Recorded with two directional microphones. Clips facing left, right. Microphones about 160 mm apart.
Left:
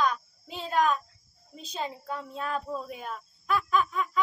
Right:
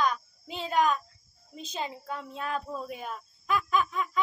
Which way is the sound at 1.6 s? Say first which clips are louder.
Left 1 dB; centre (ahead or behind).